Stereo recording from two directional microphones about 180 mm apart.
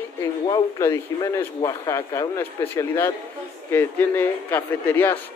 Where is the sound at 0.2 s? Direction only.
15° left (ahead or behind).